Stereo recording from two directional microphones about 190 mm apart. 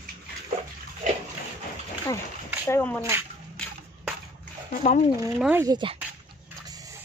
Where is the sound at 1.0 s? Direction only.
40° right (ahead or behind).